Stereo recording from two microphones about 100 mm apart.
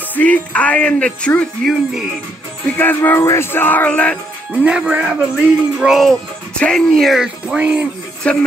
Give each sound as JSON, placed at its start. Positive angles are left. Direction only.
{"t": 0.1, "sound": "speech", "side_deg": 15}
{"t": 2.8, "sound": "speech", "side_deg": 20}
{"t": 4.6, "sound": "music", "side_deg": -10}
{"t": 6.6, "sound": "speech", "side_deg": 5}
{"t": 8.2, "sound": "speech", "side_deg": 10}